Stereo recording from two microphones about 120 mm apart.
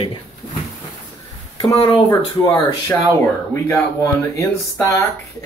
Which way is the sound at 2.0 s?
25° left (ahead or behind).